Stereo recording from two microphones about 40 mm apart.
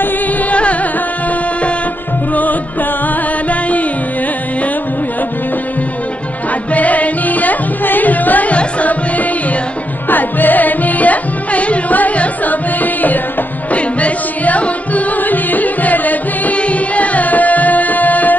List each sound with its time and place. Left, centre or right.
0.5 s music: left
6.7 s music: left
8.5 s music: left
10.0 s music: left
16.5 s music: left